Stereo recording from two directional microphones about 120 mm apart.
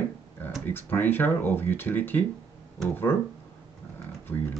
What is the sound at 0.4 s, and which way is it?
Speech, 15° left (ahead or behind).